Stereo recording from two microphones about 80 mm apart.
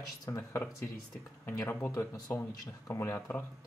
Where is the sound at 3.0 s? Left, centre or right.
Left.